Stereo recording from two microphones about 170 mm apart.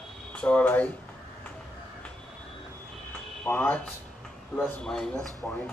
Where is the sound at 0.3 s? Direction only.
5° left (ahead or behind).